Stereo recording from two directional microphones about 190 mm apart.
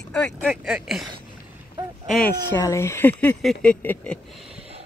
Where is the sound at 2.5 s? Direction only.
15° left (ahead or behind).